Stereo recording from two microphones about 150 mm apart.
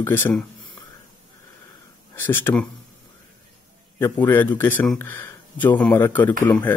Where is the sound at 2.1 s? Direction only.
15° left (ahead or behind).